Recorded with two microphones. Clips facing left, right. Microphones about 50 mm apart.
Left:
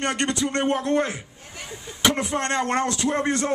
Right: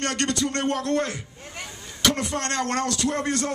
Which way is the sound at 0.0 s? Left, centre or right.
Centre.